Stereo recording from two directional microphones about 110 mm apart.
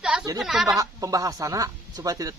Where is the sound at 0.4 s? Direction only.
5° right (ahead or behind).